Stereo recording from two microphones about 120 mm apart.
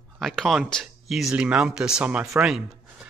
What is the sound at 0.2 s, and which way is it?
Speech, centre (ahead or behind).